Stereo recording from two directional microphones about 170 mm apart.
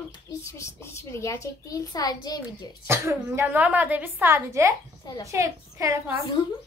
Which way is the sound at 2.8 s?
15° right (ahead or behind).